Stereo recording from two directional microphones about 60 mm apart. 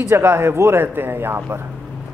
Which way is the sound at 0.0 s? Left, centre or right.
Right.